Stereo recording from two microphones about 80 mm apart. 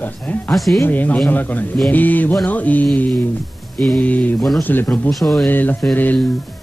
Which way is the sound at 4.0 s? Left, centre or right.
Centre.